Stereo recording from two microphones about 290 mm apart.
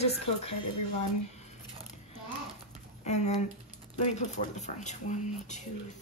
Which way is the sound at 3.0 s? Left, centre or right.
Left.